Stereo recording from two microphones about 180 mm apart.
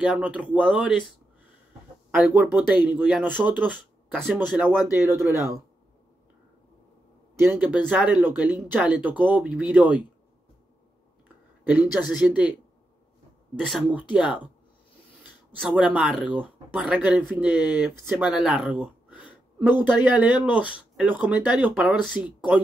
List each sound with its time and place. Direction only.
0.0 s speech: 5° right (ahead or behind)
2.0 s speech: 5° right (ahead or behind)
7.3 s speech: 10° right (ahead or behind)
11.9 s speech: 5° right (ahead or behind)
13.6 s speech: centre (ahead or behind)
15.5 s speech: centre (ahead or behind)